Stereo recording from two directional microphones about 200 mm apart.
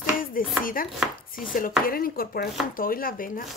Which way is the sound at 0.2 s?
45° left (ahead or behind).